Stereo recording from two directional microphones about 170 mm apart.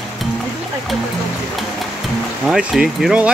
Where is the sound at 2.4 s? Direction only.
5° right (ahead or behind).